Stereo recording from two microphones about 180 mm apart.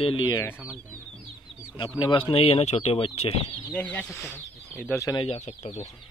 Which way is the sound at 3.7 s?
10° left (ahead or behind).